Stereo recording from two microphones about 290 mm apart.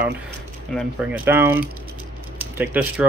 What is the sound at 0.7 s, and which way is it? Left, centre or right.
Speech, centre.